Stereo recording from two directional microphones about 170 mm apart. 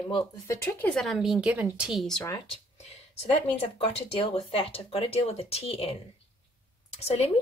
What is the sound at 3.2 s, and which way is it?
Speech, 35° left (ahead or behind).